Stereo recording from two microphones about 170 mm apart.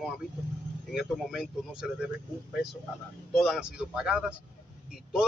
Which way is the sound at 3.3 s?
Centre (ahead or behind).